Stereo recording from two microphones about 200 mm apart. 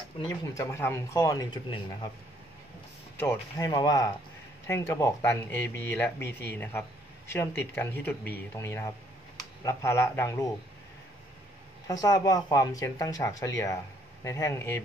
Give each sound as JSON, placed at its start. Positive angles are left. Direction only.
{"t": 0.2, "sound": "speech", "side_deg": 15}
{"t": 3.2, "sound": "speech", "side_deg": 15}
{"t": 11.9, "sound": "speech", "side_deg": 15}